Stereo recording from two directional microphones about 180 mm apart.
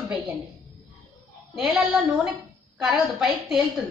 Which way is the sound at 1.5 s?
5° right (ahead or behind).